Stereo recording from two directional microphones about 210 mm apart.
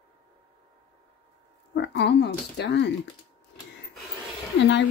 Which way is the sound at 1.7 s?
55° left (ahead or behind).